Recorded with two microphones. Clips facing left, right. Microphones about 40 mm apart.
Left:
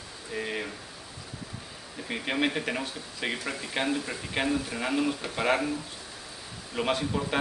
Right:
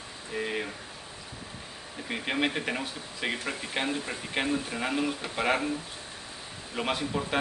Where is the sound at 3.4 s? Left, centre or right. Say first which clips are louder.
Even; centre.